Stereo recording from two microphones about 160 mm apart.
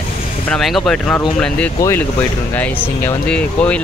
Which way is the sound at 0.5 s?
Centre (ahead or behind).